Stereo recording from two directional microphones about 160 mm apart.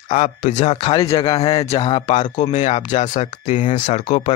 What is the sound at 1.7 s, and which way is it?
Speech, 25° left (ahead or behind).